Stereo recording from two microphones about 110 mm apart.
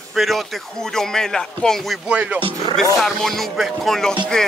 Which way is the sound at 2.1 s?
10° right (ahead or behind).